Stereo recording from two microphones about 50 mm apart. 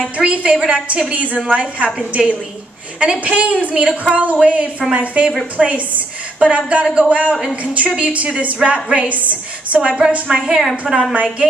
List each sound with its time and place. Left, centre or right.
0.2 s a woman's voice: right
9.1 s a woman's voice: right
10.2 s a woman's voice: centre